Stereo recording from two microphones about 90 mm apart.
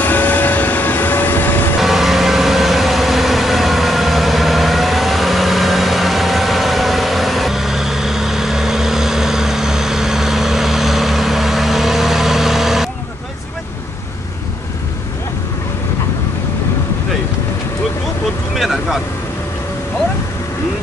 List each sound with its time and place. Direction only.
0.0 s vehicle: 20° left (ahead or behind)
1.8 s vehicle: 5° right (ahead or behind)
18.6 s vehicle: 5° right (ahead or behind)